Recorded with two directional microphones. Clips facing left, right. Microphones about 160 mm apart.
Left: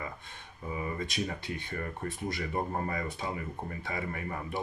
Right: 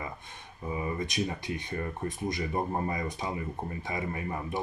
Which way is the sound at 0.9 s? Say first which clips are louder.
Right 3 dB; 15° right (ahead or behind).